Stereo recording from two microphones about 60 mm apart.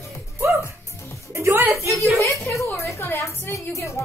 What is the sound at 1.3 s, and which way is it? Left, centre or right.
Music, right.